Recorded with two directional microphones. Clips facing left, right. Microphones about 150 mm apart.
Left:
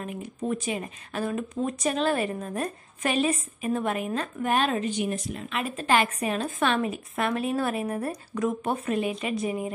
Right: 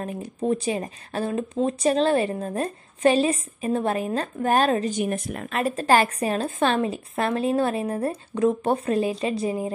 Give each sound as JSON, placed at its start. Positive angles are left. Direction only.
{"t": 0.0, "sound": "speech", "side_deg": -35}
{"t": 5.5, "sound": "speech", "side_deg": -40}